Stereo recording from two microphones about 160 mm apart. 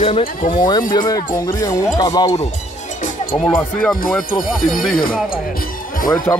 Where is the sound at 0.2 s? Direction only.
60° left (ahead or behind).